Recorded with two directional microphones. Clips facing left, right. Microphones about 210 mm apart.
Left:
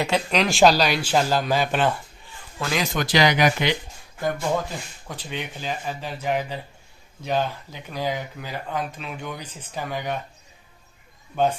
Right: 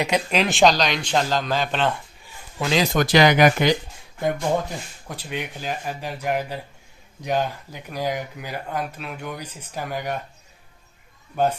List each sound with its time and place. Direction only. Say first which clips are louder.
0.3 s speech: left 1 dB; centre (ahead or behind)
2.6 s speech: right 4 dB; 25° right (ahead or behind)
2.9 s speech: right 3 dB; 50° right (ahead or behind)
4.2 s speech: right 2 dB; 15° right (ahead or behind)
11.3 s speech: even; 10° right (ahead or behind)